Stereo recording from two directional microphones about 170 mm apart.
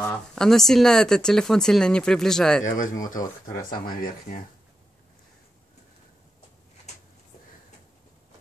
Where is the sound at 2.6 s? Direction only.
50° left (ahead or behind).